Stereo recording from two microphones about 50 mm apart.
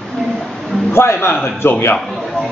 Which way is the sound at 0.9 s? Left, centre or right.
Left.